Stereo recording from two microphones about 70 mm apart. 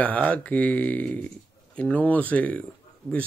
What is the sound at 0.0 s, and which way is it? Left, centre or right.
Speech, left.